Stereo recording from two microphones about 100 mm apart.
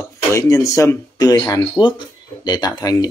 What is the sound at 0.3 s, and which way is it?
Speech, 30° left (ahead or behind).